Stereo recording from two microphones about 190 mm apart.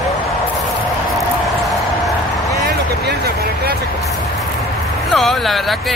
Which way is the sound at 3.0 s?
55° right (ahead or behind).